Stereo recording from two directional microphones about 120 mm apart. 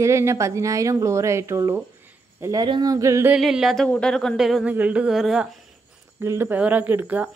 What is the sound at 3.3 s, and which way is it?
Speech, 5° right (ahead or behind).